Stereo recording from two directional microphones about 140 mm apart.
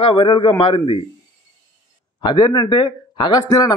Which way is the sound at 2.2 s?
30° left (ahead or behind).